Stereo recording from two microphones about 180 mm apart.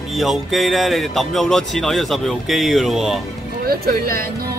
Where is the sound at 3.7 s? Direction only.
55° right (ahead or behind).